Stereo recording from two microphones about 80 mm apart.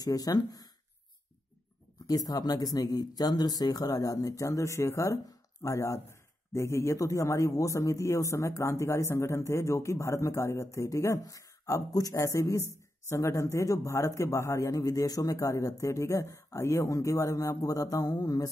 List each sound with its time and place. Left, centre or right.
0.0 s speech: left
2.0 s speech: left